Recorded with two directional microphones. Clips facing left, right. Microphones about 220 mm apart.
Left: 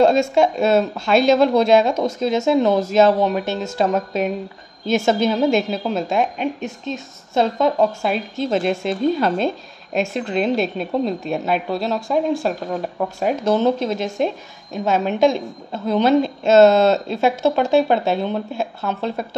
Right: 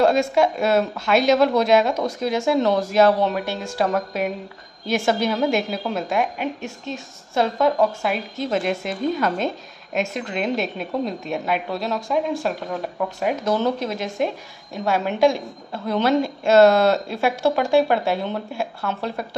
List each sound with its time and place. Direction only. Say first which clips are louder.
0.0 s speech: left 3 dB; 25° left (ahead or behind)